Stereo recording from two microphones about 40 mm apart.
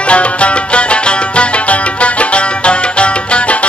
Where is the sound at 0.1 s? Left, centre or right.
Left.